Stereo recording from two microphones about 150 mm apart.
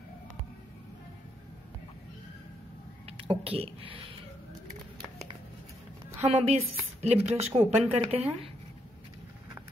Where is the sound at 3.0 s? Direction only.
40° right (ahead or behind).